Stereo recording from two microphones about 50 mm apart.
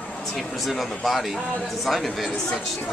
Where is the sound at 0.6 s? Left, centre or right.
Centre.